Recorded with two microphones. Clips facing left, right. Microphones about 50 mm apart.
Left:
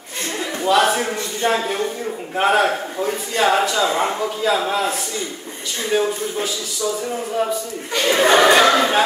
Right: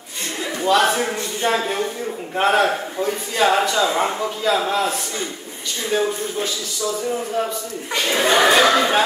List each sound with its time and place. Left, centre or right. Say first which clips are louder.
0.6 s a man's voice: left 1 dB; centre
8.2 s speech: left 3 dB; left
8.5 s speech: left 1 dB; centre